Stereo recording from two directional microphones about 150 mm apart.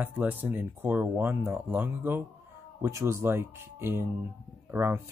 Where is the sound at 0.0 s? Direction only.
10° right (ahead or behind).